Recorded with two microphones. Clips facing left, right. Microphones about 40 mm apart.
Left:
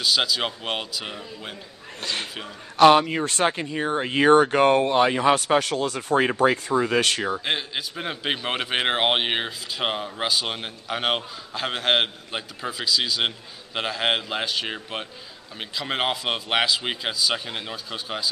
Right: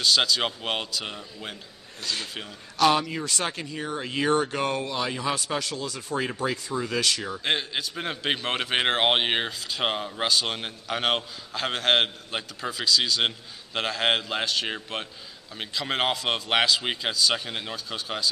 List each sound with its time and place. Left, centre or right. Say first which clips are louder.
0.0 s a man's voice: even; centre
2.8 s speech: left 7 dB; left
7.4 s a man's voice: even; centre